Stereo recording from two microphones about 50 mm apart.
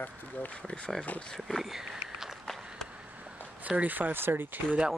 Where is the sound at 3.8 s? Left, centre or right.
Right.